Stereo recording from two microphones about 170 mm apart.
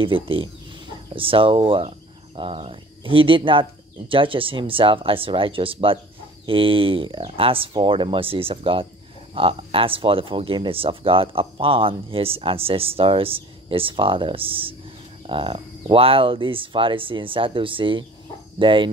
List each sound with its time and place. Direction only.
0.0 s speech: 30° right (ahead or behind)